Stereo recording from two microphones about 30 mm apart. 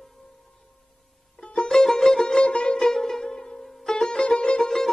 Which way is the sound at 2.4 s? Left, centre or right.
Left.